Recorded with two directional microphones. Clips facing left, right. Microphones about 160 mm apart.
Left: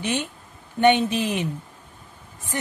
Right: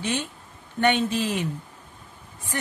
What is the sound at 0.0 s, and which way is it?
Speech, 20° left (ahead or behind).